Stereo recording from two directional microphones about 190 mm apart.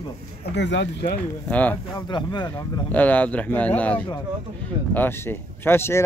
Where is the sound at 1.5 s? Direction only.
10° left (ahead or behind).